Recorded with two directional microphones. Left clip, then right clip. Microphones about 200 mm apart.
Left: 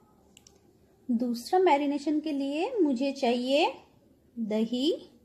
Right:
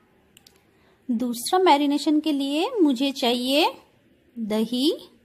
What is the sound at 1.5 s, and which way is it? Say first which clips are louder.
A woman's voice: right 5 dB; 40° right (ahead or behind).